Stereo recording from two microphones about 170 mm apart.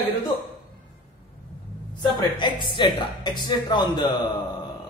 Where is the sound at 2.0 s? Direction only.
25° left (ahead or behind).